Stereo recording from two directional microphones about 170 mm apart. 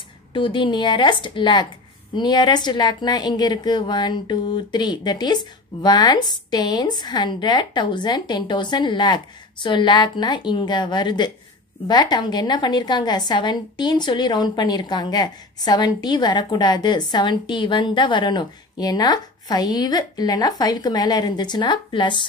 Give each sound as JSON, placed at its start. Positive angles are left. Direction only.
{"t": 0.3, "sound": "a woman's voice", "side_deg": 30}